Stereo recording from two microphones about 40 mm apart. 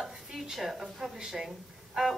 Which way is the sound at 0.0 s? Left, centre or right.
Centre.